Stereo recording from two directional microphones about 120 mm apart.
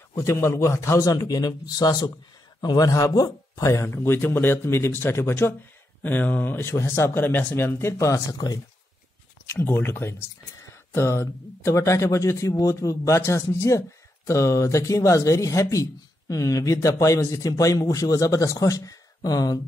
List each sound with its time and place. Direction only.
0.1 s speech: 25° left (ahead or behind)
9.5 s speech: 20° left (ahead or behind)